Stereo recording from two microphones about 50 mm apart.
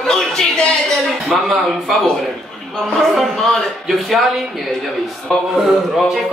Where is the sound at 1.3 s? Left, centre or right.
Centre.